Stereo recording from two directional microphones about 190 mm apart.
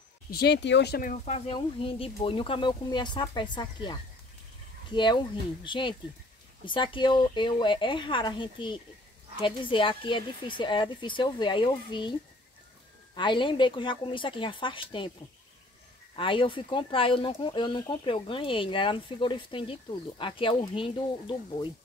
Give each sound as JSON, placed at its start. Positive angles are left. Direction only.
{"t": 0.3, "sound": "speech", "side_deg": 60}
{"t": 1.1, "sound": "speech", "side_deg": 35}
{"t": 16.2, "sound": "speech", "side_deg": 25}